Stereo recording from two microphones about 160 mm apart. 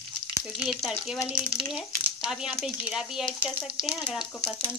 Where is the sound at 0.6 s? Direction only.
5° right (ahead or behind).